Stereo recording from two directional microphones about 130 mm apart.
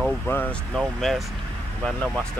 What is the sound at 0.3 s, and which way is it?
Speech, 15° left (ahead or behind).